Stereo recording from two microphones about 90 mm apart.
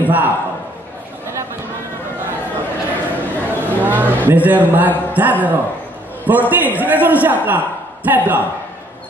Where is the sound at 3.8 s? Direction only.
20° right (ahead or behind).